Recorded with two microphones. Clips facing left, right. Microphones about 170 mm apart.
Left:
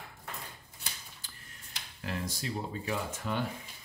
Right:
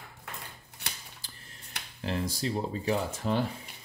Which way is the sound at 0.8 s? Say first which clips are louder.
Right 4 dB; 70° right (ahead or behind).